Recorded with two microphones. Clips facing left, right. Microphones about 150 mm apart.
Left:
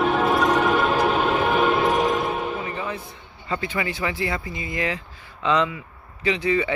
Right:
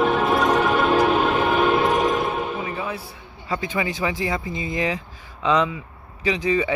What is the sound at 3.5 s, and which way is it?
Speech, 15° right (ahead or behind).